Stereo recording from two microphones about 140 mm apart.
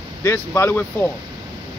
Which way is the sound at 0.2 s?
20° left (ahead or behind).